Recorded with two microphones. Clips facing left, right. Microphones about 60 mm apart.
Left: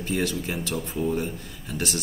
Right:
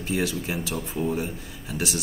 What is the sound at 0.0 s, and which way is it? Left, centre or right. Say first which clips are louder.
Speech: even; centre.